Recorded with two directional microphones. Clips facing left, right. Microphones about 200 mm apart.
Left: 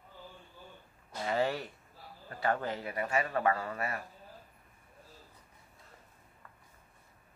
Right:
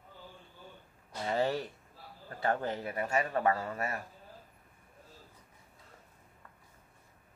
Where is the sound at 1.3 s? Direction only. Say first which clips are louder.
Right 1 dB; 40° right (ahead or behind).